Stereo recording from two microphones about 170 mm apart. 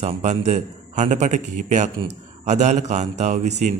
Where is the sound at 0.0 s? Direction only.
40° right (ahead or behind).